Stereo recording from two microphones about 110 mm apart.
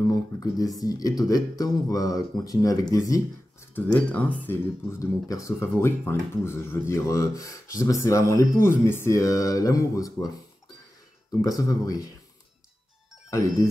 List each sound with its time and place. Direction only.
0.1 s speech: 35° left (ahead or behind)
3.7 s speech: 15° left (ahead or behind)
4.9 s speech: 30° left (ahead or behind)
11.4 s speech: 35° left (ahead or behind)